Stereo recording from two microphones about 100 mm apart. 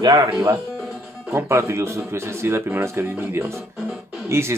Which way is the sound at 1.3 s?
25° right (ahead or behind).